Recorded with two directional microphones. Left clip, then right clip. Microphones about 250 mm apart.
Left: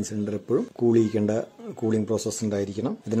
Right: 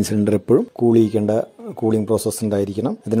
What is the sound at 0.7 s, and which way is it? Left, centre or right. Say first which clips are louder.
Speech: right 6 dB; centre.